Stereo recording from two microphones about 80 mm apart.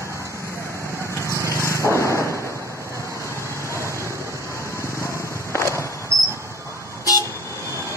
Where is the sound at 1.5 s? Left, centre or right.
Left.